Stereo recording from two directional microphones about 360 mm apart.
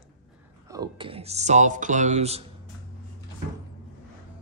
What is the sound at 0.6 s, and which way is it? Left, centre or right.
Music, centre.